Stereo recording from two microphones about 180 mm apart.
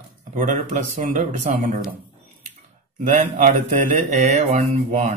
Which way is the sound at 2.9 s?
45° right (ahead or behind).